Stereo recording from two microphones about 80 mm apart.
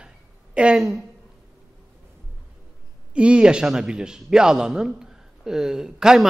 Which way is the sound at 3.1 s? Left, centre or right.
Centre.